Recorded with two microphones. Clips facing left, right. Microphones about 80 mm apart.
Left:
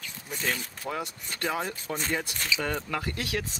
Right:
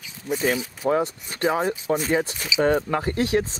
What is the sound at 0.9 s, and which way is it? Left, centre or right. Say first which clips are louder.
Speech: right 11 dB; right.